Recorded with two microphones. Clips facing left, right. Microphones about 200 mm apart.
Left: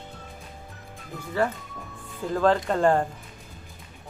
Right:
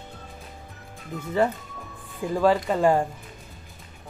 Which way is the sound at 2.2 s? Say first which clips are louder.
Right 1 dB; 10° right (ahead or behind).